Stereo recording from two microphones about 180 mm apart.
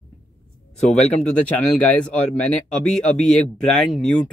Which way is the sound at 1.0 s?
40° left (ahead or behind).